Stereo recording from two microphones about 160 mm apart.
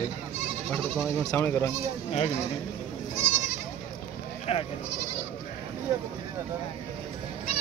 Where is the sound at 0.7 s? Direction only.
5° left (ahead or behind).